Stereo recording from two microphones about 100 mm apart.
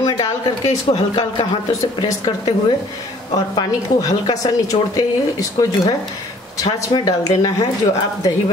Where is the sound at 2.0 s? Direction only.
45° left (ahead or behind).